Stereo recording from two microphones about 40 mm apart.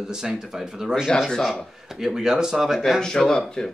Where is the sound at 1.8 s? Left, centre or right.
Centre.